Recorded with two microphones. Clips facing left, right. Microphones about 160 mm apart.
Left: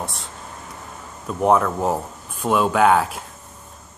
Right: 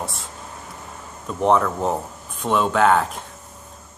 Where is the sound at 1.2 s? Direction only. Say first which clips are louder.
Left 1 dB; 5° left (ahead or behind).